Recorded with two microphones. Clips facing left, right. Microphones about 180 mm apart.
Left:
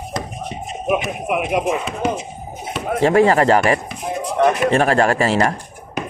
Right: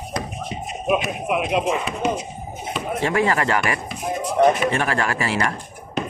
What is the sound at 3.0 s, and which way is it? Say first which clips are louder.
Speech: left 8 dB; 40° left (ahead or behind).